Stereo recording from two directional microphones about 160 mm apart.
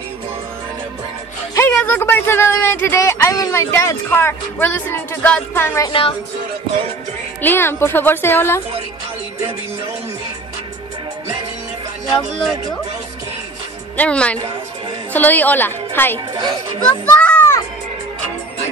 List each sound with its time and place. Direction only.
1.7 s speech: 10° left (ahead or behind)
5.9 s speech: 30° left (ahead or behind)
7.4 s speech: 15° left (ahead or behind)
13.9 s speech: 5° left (ahead or behind)
16.8 s children playing: 10° left (ahead or behind)